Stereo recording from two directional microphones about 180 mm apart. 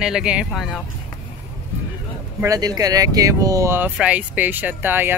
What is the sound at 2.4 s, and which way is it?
Speech, 20° right (ahead or behind).